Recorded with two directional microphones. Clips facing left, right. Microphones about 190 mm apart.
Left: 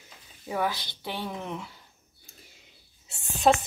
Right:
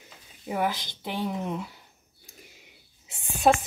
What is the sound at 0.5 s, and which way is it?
Speech, 15° right (ahead or behind).